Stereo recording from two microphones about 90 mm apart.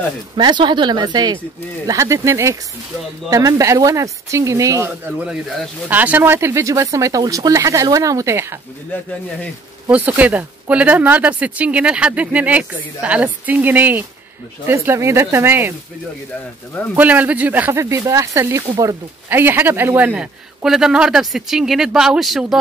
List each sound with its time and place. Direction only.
0.4 s speech: 55° right (ahead or behind)
1.9 s speech: 35° right (ahead or behind)
5.0 s speech: 15° right (ahead or behind); by 8.5 s 30° right (ahead or behind)
9.8 s speech: 15° right (ahead or behind)
14.7 s speech: 30° right (ahead or behind)
16.9 s speech: 15° right (ahead or behind)
17.8 s speech: 35° right (ahead or behind); by 20.2 s 20° right (ahead or behind)
20.6 s speech: 5° right (ahead or behind)